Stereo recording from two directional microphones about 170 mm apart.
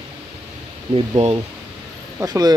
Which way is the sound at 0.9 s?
35° right (ahead or behind).